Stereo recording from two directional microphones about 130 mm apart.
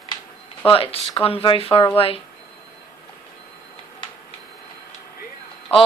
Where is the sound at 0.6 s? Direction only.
45° left (ahead or behind).